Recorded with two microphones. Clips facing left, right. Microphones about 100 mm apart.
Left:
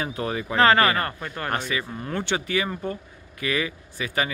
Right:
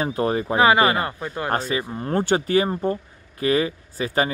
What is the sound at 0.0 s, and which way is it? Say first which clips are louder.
Speech: right 6 dB; 35° right (ahead or behind).